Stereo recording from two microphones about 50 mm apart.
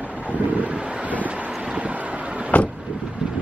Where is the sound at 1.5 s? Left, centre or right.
Centre.